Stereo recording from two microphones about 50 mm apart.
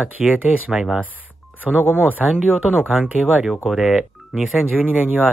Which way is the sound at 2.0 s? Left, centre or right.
Right.